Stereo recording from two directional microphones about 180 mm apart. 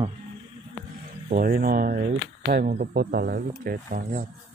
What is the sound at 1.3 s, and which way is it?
Speech, 55° right (ahead or behind).